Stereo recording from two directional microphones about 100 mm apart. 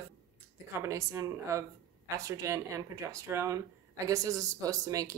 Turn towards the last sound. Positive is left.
turn(degrees=-35)  # may be behind; listen again after turning